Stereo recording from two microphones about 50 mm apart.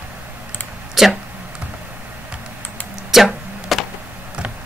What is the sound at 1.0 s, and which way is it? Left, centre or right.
Speech, centre.